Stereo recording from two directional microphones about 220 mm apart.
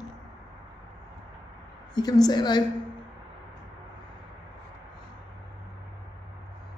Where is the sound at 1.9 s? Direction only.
20° left (ahead or behind).